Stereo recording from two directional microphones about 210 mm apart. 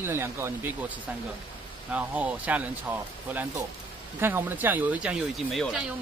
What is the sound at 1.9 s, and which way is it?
Speech, 5° right (ahead or behind).